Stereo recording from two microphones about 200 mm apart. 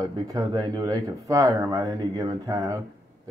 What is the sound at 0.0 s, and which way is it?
Speech, 20° right (ahead or behind).